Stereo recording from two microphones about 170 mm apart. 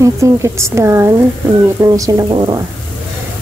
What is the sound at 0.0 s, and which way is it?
Speech, 15° right (ahead or behind).